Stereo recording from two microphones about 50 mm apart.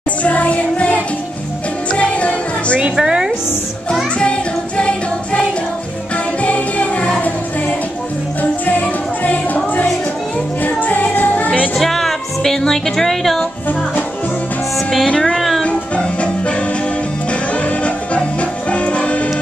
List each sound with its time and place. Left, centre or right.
0.2 s music: left
2.8 s a woman's voice: centre
4.2 s music: left
10.6 s music: left
11.7 s music: centre
15.0 s music: centre
15.3 s music: centre
15.6 s music: left